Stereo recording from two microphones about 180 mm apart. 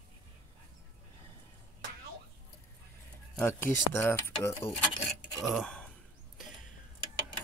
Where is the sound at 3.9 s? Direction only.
15° left (ahead or behind).